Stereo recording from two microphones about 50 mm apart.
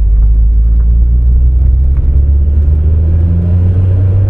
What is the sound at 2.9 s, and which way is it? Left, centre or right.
Vehicle, centre.